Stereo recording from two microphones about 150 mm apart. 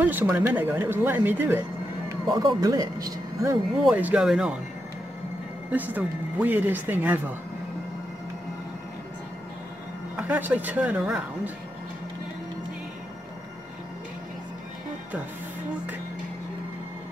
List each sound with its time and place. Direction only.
0.0 s speech: 10° right (ahead or behind)
2.2 s speech: 25° right (ahead or behind)
3.8 s speech: 10° right (ahead or behind)
5.7 s speech: 10° right (ahead or behind)
10.1 s speech: 10° right (ahead or behind)